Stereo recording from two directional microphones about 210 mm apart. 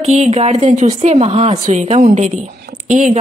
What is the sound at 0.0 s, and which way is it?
A woman's voice, 30° right (ahead or behind).